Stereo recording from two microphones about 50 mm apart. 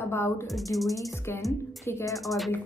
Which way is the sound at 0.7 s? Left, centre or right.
Centre.